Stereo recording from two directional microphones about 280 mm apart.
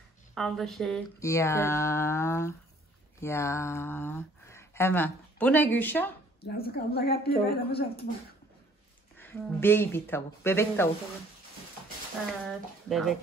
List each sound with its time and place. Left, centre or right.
0.3 s speech: centre
6.4 s a woman's voice: left
9.2 s speech: centre
12.4 s speech: centre